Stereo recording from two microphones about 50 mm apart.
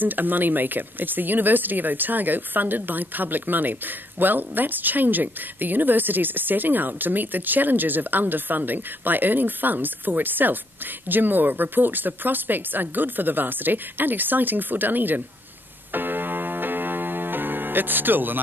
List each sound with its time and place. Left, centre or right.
0.0 s speech: right
15.9 s music: right